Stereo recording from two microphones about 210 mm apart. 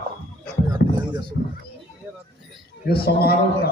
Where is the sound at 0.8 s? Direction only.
50° left (ahead or behind).